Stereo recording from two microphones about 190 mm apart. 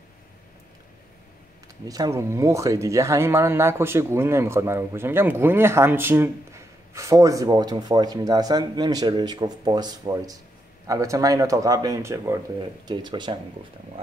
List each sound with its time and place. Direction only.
1.9 s speech: 15° right (ahead or behind)